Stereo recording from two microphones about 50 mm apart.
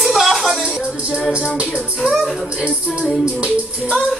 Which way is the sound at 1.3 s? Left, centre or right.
Right.